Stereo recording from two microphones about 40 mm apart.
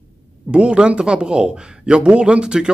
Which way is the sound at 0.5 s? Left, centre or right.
Right.